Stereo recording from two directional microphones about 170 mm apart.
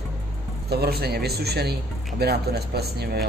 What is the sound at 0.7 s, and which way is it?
A man's voice, 65° right (ahead or behind).